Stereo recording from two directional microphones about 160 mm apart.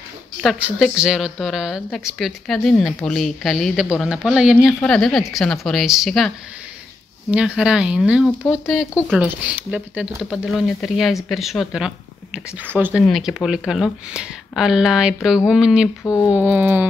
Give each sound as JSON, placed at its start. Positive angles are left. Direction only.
{"t": 0.4, "sound": "speech", "side_deg": -5}
{"t": 13.0, "sound": "speech", "side_deg": 0}
{"t": 16.0, "sound": "a sound", "side_deg": 15}
{"t": 16.4, "sound": "music", "side_deg": -10}